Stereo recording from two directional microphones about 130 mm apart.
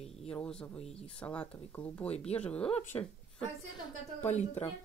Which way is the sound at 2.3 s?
10° left (ahead or behind).